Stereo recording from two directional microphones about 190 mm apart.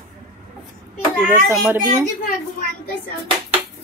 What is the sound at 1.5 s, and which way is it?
Speech, 15° right (ahead or behind).